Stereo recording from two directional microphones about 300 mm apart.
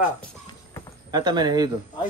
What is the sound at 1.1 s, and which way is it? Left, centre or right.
Speech, centre.